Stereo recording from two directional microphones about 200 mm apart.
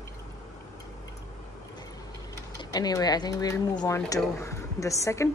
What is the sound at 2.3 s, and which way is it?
A woman's voice, 20° left (ahead or behind).